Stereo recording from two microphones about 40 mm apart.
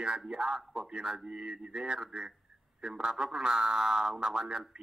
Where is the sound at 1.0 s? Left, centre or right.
Right.